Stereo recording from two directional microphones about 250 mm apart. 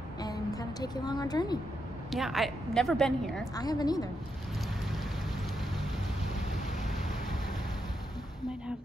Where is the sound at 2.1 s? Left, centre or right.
Centre.